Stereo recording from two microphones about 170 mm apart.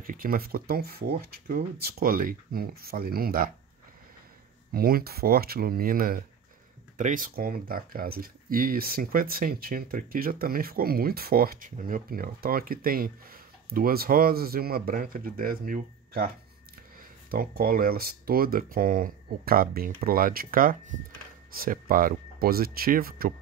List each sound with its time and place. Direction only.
0.0 s speech: 55° right (ahead or behind)
4.7 s speech: 60° right (ahead or behind)
17.3 s speech: 60° right (ahead or behind)